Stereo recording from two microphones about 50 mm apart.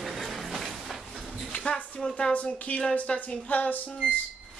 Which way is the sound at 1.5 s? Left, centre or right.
Left.